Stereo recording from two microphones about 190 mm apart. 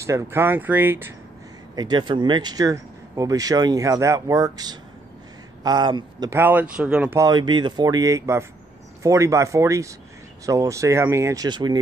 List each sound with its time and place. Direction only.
0.0 s speech: 15° right (ahead or behind)
1.8 s speech: 25° right (ahead or behind)
6.4 s speech: 10° right (ahead or behind)